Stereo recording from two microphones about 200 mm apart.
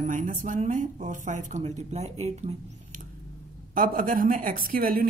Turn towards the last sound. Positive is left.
turn(degrees=-45)  # may be behind; listen again after turning